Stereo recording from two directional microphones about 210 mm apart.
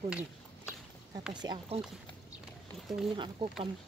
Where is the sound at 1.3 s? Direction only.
20° right (ahead or behind).